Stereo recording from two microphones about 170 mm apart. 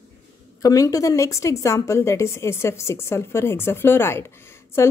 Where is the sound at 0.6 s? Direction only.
20° left (ahead or behind).